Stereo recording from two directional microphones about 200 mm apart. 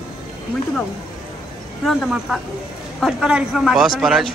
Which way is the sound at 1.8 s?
Centre (ahead or behind).